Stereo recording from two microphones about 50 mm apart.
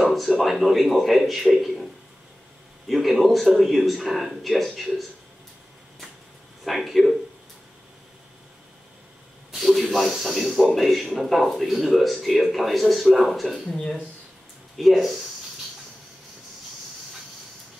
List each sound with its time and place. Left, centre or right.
0.4 s speech: centre
2.9 s speech: centre
6.6 s speech: centre
9.5 s speech: centre
13.7 s speech: centre
14.8 s speech: centre